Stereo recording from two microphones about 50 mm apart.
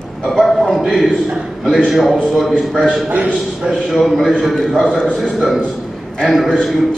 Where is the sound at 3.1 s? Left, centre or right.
Right.